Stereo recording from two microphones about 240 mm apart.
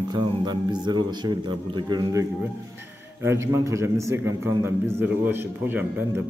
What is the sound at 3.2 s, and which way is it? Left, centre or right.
A man's voice, centre.